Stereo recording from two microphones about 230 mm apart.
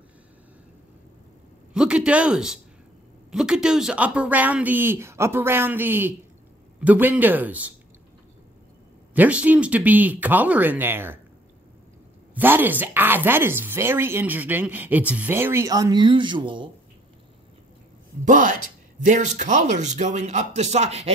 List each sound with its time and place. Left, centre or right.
1.7 s a man's voice: centre
9.1 s speech: centre
12.4 s speech: centre
18.2 s speech: right